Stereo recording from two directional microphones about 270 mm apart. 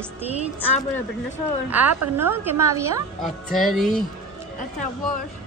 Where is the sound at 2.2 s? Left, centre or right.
Centre.